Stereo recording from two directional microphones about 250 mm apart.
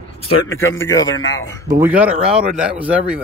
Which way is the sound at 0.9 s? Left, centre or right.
Centre.